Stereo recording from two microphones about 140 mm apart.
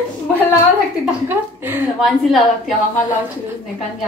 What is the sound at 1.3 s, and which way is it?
Speech, 15° right (ahead or behind).